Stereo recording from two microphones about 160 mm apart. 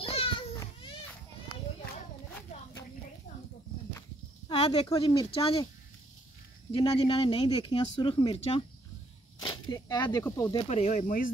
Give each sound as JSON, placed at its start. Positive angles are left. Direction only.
{"t": 0.0, "sound": "a sound", "side_deg": 35}
{"t": 4.5, "sound": "a sound", "side_deg": 35}
{"t": 4.9, "sound": "speech", "side_deg": 35}
{"t": 6.7, "sound": "speech", "side_deg": 35}
{"t": 9.4, "sound": "snake", "side_deg": 25}
{"t": 10.2, "sound": "speech", "side_deg": 15}
{"t": 10.7, "sound": "speech", "side_deg": 45}